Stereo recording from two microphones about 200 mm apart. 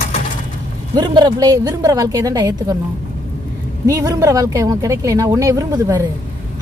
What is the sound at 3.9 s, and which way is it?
A woman's voice, 20° right (ahead or behind).